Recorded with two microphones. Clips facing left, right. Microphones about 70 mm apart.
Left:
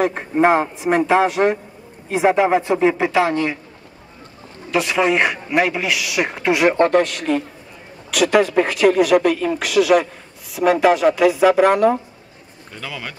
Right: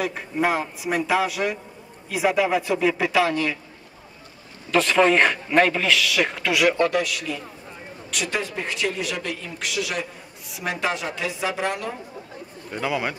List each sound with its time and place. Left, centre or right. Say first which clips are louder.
0.0 s a man's voice: left 8 dB; left
4.6 s speech: even; centre; by 7.4 s left
8.1 s speech: left 12 dB; left
12.7 s speech: right 6 dB; centre